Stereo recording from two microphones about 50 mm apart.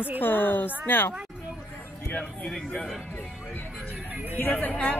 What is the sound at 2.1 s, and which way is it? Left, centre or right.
Speech, left.